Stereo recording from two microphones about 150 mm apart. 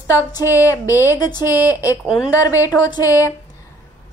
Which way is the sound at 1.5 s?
15° right (ahead or behind).